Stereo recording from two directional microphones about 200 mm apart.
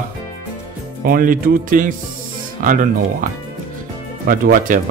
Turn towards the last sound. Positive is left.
turn(degrees=-40)  # may be behind; listen again after turning